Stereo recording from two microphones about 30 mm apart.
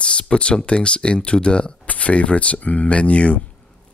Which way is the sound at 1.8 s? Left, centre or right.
Left.